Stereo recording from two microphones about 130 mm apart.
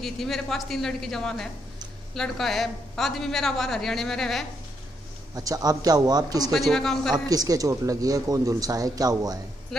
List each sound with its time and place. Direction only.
0.0 s a woman's voice: centre (ahead or behind)
5.3 s speech: 30° right (ahead or behind)
6.5 s a woman's voice: centre (ahead or behind)
7.2 s speech: 30° right (ahead or behind)